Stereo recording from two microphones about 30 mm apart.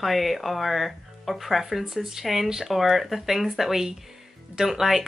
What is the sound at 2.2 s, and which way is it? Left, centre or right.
Speech, centre.